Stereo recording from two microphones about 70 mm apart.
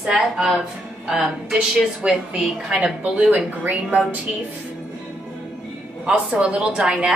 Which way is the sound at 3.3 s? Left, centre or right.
Centre.